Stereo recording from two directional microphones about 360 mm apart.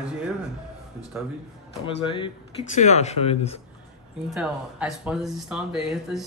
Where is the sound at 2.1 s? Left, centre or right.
Centre.